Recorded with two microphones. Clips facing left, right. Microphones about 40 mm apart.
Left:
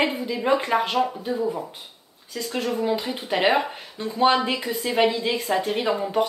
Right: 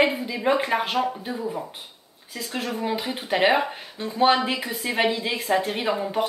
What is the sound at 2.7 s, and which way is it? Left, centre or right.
Speech, centre.